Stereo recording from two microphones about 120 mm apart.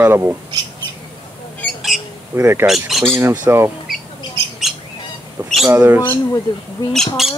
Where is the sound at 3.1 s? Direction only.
20° right (ahead or behind).